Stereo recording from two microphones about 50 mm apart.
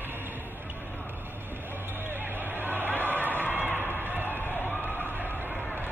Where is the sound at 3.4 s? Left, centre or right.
Right.